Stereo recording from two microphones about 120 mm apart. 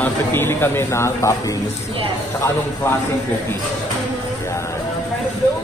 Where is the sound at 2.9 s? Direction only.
20° left (ahead or behind).